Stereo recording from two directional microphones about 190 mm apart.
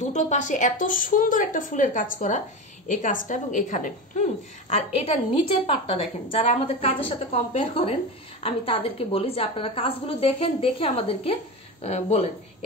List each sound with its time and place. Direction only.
0.0 s a woman's voice: 40° left (ahead or behind)